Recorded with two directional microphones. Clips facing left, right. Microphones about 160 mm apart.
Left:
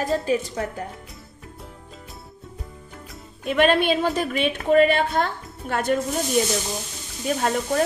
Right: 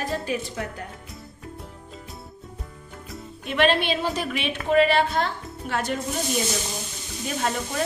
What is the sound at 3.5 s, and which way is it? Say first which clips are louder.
A woman's voice: left 3 dB; 45° left (ahead or behind).